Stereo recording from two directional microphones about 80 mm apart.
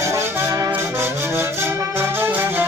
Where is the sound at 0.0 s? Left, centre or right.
Right.